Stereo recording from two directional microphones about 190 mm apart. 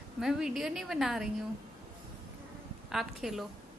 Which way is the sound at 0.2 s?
Centre (ahead or behind).